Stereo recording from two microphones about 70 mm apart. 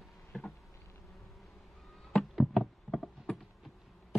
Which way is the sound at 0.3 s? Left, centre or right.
Centre.